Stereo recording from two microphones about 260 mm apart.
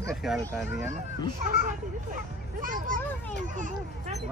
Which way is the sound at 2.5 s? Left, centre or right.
Right.